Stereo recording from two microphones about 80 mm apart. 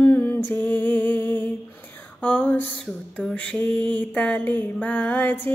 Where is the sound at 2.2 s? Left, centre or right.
Centre.